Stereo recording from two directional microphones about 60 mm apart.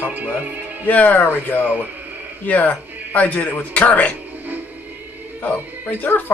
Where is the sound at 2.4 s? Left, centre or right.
Left.